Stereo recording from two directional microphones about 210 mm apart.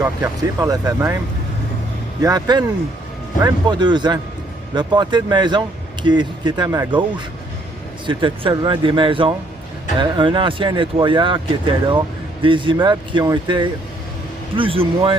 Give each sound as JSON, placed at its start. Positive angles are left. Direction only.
{"t": 0.6, "sound": "speech", "side_deg": -15}
{"t": 2.2, "sound": "speech", "side_deg": -20}
{"t": 8.1, "sound": "speech", "side_deg": -25}